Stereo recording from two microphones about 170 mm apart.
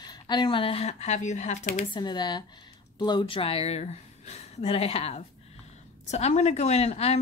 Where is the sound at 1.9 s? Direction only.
25° left (ahead or behind).